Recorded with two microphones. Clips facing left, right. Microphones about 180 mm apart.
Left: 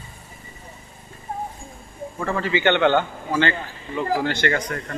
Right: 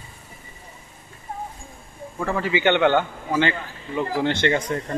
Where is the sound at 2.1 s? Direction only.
10° right (ahead or behind); by 4.9 s 25° right (ahead or behind).